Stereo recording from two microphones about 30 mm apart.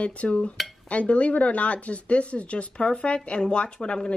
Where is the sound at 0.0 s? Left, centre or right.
Left.